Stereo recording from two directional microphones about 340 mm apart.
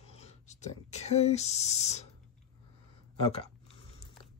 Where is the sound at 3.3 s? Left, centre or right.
Centre.